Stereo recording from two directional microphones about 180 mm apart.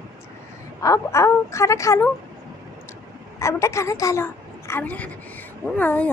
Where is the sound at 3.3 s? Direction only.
15° left (ahead or behind).